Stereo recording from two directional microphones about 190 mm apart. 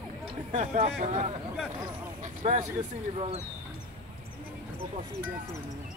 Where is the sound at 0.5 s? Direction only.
40° right (ahead or behind).